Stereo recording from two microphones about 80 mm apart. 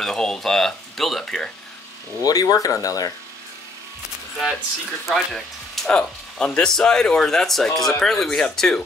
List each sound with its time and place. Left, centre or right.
0.0 s a sound: centre
2.2 s speech: left
5.0 s speech: centre